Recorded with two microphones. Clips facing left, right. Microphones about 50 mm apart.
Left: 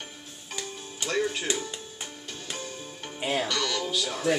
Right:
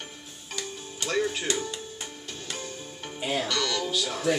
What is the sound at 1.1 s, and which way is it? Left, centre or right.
Speech, centre.